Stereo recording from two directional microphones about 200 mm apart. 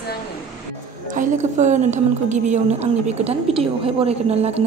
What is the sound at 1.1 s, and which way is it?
A woman's voice, 40° right (ahead or behind).